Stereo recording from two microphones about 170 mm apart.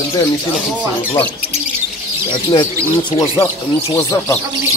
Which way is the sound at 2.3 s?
25° left (ahead or behind).